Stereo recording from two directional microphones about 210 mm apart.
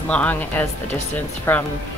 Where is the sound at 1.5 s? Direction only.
10° left (ahead or behind).